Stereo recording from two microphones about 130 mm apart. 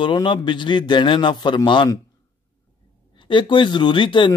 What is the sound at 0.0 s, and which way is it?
A man's voice, 40° left (ahead or behind).